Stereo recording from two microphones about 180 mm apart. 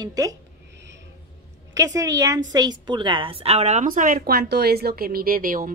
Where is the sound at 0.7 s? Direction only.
75° right (ahead or behind).